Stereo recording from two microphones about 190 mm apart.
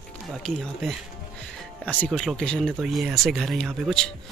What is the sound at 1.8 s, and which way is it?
Speech, 5° left (ahead or behind).